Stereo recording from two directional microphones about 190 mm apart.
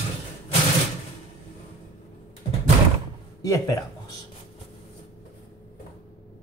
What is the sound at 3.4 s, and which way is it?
Speech, 15° left (ahead or behind).